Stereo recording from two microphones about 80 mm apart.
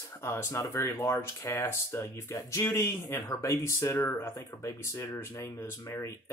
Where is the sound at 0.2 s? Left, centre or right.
Left.